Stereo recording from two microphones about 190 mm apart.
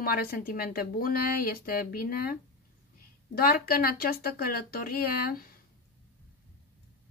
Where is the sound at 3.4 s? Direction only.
50° left (ahead or behind).